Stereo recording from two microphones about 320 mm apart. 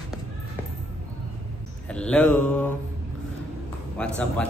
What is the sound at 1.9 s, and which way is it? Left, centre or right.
Mantra, centre.